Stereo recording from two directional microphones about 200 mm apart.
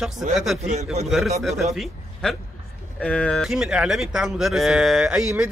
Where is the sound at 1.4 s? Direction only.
Centre (ahead or behind).